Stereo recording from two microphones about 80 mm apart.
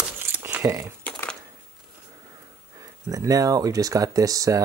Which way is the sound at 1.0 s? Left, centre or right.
Centre.